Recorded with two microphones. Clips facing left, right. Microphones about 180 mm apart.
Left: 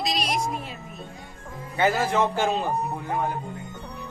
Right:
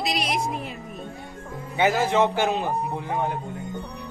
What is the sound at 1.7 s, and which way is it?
A man's voice, 15° right (ahead or behind).